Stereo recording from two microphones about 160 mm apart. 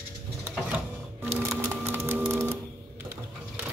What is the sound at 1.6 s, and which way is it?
Music, 15° right (ahead or behind).